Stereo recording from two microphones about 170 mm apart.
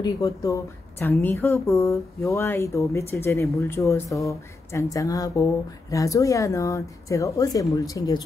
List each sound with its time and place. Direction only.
0.0 s a woman's voice: 20° left (ahead or behind)